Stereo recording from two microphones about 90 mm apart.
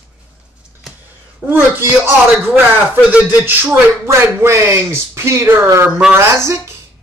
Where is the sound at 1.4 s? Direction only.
20° right (ahead or behind).